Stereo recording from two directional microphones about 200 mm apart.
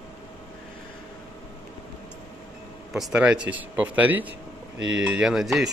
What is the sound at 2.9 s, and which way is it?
Speech, 5° right (ahead or behind).